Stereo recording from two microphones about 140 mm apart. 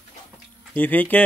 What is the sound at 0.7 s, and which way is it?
Speech, 10° left (ahead or behind).